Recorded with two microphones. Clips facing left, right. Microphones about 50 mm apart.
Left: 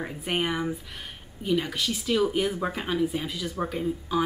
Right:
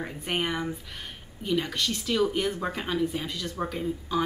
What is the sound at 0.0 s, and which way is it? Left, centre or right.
Speech, centre.